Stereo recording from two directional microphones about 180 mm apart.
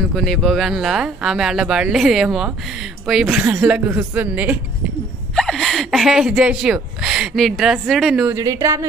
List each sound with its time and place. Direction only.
0.1 s a woman's voice: centre (ahead or behind)
5.3 s speech: centre (ahead or behind)
8.4 s a woman's voice: 15° right (ahead or behind)